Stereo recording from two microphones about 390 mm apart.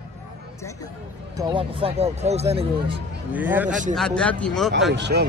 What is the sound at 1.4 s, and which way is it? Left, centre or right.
Speech, centre.